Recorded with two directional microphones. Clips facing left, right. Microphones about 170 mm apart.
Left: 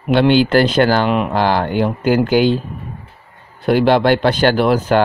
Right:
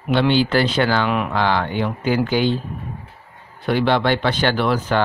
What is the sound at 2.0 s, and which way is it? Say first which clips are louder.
Speech: left 5 dB; 85° left.